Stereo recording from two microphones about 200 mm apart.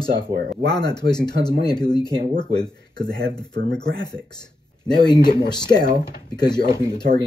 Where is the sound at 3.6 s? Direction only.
55° right (ahead or behind).